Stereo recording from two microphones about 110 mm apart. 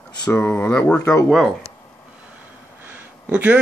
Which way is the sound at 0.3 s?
20° left (ahead or behind).